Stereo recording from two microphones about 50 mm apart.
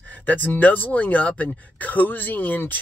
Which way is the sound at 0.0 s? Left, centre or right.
Left.